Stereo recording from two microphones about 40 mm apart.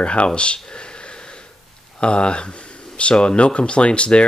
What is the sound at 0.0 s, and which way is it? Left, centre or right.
Speech, left.